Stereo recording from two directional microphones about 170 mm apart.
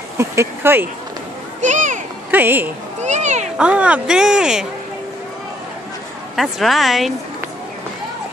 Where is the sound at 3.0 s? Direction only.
45° right (ahead or behind).